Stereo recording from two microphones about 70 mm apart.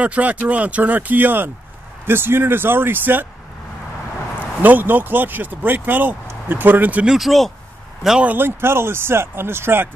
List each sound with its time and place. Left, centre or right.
0.0 s speech: centre
4.6 s speech: right
7.1 s speech: centre
8.3 s speech: right